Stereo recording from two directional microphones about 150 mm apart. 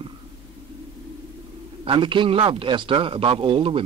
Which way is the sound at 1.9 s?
35° right (ahead or behind).